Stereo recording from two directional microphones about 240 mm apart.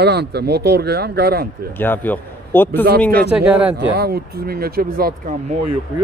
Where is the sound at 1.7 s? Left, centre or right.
Centre.